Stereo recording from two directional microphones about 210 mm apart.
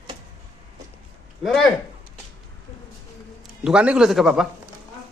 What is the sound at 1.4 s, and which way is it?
Speech, centre (ahead or behind).